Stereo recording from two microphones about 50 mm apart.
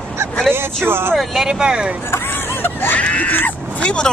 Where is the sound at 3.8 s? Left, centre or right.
Centre.